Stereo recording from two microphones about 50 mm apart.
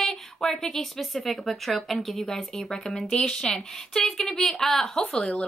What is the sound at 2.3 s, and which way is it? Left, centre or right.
A woman's voice, centre.